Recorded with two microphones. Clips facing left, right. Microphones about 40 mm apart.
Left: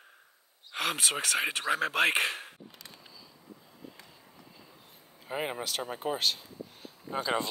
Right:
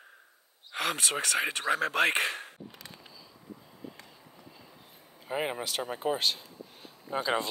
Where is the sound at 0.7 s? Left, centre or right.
Centre.